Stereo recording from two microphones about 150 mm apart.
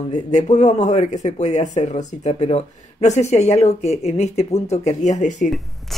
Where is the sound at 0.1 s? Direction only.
50° left (ahead or behind).